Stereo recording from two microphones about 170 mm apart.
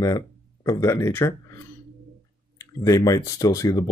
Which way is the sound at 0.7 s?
15° left (ahead or behind).